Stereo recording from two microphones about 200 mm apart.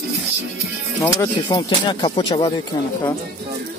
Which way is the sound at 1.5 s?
25° left (ahead or behind).